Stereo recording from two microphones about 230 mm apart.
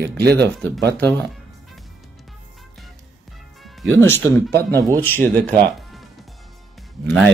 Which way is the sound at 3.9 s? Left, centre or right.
Centre.